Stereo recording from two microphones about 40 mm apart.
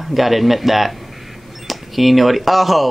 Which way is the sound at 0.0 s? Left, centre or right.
Centre.